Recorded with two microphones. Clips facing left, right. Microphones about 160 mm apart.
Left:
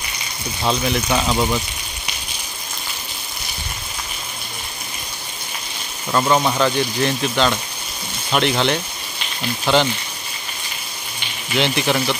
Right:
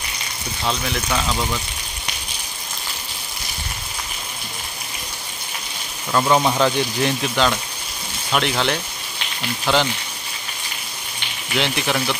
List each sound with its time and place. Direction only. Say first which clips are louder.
0.7 s speech: left 4 dB; 20° left (ahead or behind)
6.1 s speech: even; 5° right (ahead or behind)
11.5 s speech: left 3 dB; centre (ahead or behind)